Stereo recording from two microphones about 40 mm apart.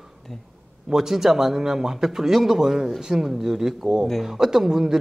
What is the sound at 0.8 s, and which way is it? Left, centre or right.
Speech, centre.